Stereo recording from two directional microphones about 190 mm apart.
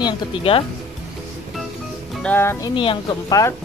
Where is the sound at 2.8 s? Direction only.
25° left (ahead or behind).